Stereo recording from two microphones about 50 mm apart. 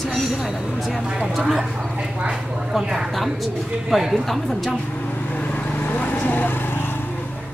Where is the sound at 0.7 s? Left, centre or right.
Centre.